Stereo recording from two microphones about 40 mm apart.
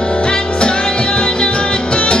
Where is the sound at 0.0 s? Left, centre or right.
Left.